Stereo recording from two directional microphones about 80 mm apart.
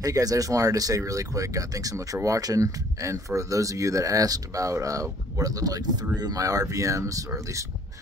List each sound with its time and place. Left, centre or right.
0.0 s speech: right